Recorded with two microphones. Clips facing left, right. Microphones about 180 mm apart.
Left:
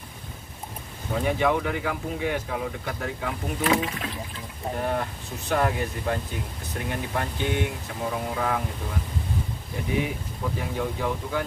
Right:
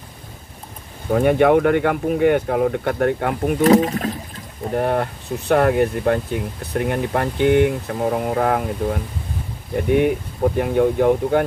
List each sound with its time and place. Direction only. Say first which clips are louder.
1.1 s speech: right 10 dB; 60° right (ahead or behind)
3.6 s speech: right 10 dB; 40° right (ahead or behind)
4.7 s speech: right 9 dB; 55° right (ahead or behind)